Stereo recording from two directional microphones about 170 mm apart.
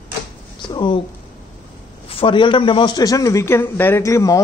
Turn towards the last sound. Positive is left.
turn(degrees=20)  # may be behind; listen again after turning